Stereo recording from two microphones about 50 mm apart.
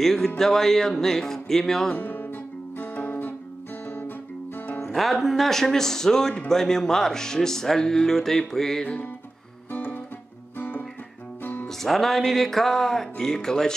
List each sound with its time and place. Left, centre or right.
0.0 s speech: centre
2.0 s music: left
4.9 s speech: centre
11.6 s music: centre